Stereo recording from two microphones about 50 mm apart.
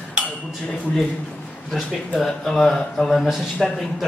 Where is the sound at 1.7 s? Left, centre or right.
Centre.